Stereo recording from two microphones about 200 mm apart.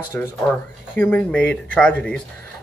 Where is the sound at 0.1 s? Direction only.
5° left (ahead or behind).